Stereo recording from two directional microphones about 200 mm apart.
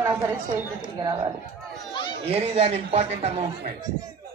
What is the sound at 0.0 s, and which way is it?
Chatter, 10° right (ahead or behind).